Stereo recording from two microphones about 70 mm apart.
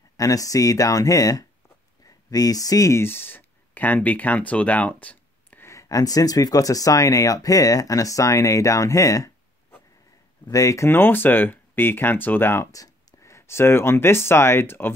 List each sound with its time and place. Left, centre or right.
0.2 s speech: left
3.0 s speech: left
5.6 s speech: left
10.5 s speech: left
10.9 s speech: left
12.7 s speech: left